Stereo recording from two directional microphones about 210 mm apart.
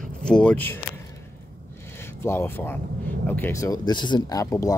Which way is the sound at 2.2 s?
10° left (ahead or behind).